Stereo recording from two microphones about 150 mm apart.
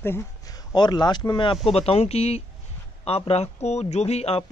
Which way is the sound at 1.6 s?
40° left (ahead or behind).